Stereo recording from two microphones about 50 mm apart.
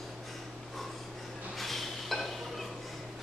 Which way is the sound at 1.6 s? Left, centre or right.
Centre.